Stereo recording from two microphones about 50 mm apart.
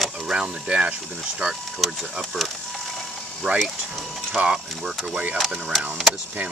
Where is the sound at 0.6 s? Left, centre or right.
Right.